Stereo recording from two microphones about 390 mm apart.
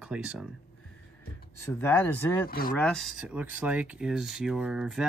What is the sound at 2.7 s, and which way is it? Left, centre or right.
Speech, centre.